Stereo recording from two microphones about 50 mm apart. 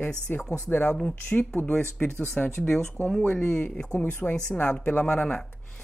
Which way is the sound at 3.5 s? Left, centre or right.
Centre.